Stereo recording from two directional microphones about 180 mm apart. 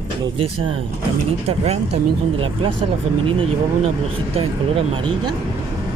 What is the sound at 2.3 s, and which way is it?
Speech, 30° right (ahead or behind).